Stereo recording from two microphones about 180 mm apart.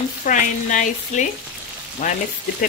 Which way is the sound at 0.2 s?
45° left (ahead or behind).